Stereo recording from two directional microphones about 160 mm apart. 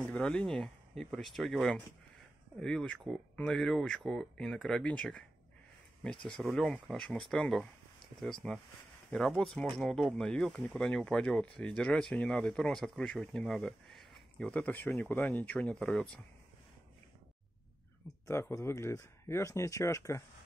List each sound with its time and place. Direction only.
0.1 s speech: 5° left (ahead or behind)
18.2 s speech: 20° left (ahead or behind)